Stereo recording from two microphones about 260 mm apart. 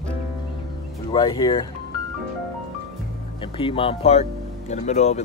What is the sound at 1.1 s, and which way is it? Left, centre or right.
Speech, centre.